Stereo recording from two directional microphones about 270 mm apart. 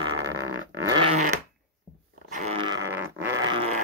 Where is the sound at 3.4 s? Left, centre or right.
Right.